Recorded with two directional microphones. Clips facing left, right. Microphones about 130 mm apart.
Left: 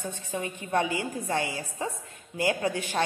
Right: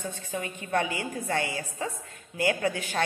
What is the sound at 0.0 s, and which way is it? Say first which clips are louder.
A woman's voice: left 1 dB; 20° left (ahead or behind).